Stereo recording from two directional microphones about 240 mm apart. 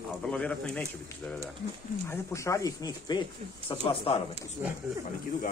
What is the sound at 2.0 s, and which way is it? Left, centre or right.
Speech, centre.